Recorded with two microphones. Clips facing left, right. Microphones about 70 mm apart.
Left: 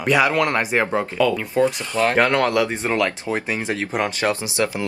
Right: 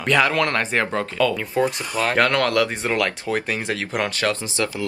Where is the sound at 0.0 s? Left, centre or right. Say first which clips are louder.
Left 1 dB; centre.